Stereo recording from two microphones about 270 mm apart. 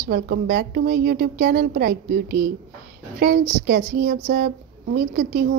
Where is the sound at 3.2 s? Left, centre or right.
Right.